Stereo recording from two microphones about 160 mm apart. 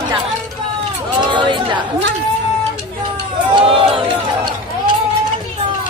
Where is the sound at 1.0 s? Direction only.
30° right (ahead or behind).